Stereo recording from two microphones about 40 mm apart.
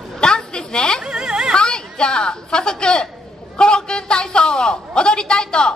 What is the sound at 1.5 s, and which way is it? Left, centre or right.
A woman's voice, centre.